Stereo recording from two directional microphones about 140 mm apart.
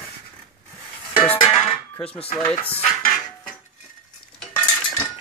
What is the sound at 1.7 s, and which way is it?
Cutlery, 5° left (ahead or behind).